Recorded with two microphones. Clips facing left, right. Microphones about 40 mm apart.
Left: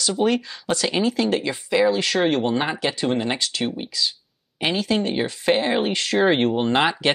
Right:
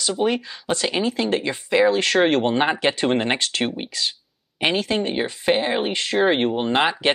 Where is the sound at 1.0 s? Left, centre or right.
Right.